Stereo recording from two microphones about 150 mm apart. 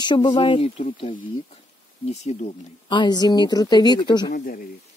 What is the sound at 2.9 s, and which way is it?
Speech, 30° left (ahead or behind).